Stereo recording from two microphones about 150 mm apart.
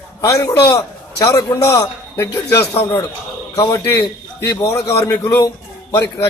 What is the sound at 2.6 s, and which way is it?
Speech, 40° left (ahead or behind).